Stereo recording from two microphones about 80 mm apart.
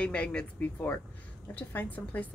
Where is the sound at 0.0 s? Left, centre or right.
Centre.